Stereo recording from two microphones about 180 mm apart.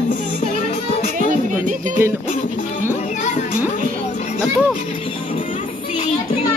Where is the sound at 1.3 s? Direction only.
45° right (ahead or behind).